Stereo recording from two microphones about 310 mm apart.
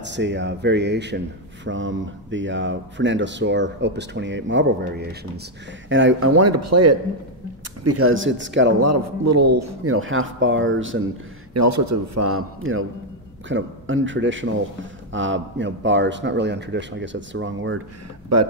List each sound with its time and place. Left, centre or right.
0.0 s speech: right
8.8 s a man's voice: right
9.9 s speech: right
11.5 s a man's voice: right
18.3 s a man's voice: right